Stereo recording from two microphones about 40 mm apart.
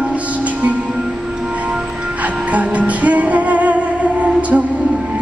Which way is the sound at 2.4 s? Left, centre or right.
Right.